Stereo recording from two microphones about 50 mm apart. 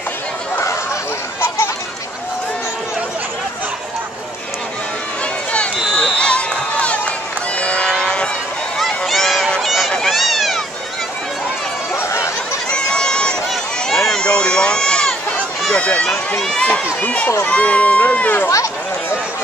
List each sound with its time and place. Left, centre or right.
5.9 s run: centre
7.9 s a sound: centre
8.7 s a sound: centre
9.6 s run: centre
12.7 s run: centre
13.5 s run: centre
14.2 s baby cry: centre
15.7 s run: left
17.5 s speech: left